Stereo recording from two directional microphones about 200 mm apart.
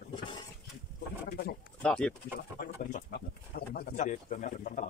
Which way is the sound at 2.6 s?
45° left (ahead or behind).